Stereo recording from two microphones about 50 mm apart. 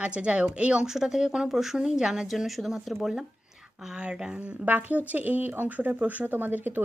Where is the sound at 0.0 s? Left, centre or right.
Right.